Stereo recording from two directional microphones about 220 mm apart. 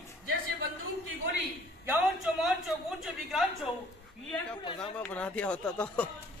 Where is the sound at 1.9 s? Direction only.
Centre (ahead or behind).